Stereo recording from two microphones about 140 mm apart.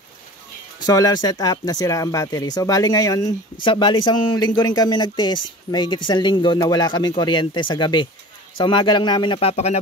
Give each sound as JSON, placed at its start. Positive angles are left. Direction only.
{"t": 0.7, "sound": "speech", "side_deg": 25}
{"t": 3.6, "sound": "speech", "side_deg": 35}